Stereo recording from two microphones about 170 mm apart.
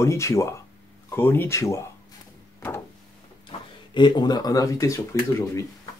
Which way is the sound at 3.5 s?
35° left (ahead or behind).